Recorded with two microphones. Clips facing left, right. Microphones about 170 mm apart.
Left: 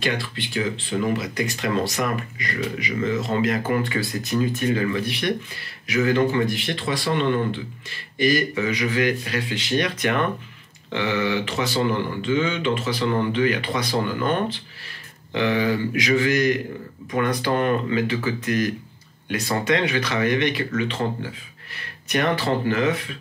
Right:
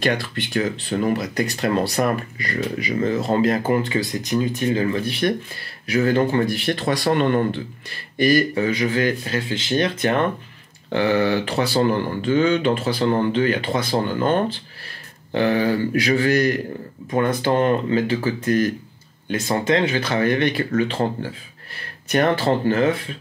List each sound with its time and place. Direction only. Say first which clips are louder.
0.0 s speech: right 4 dB; 45° right (ahead or behind); by 4.5 s 20° right (ahead or behind)
4.6 s speech: right 2 dB; 30° right (ahead or behind)
5.9 s speech: right 2 dB; 35° right (ahead or behind); by 7.4 s 50° right (ahead or behind)
8.3 s speech: right 4 dB; 30° right (ahead or behind)
10.9 s speech: right 5 dB; 40° right (ahead or behind)
15.3 s speech: right 3 dB; 35° right (ahead or behind)